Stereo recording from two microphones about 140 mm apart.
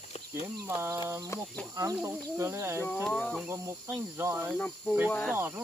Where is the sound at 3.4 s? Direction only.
20° right (ahead or behind).